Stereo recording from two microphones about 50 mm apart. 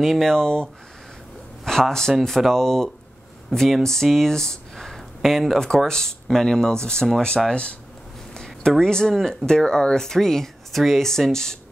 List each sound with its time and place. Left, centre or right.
0.0 s a man's voice: centre